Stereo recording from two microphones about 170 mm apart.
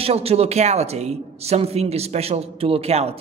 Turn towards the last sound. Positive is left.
turn(degrees=-35)  # may be behind; listen again after turning